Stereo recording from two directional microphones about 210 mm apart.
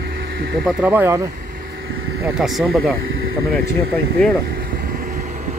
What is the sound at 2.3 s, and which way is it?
Speech, centre (ahead or behind).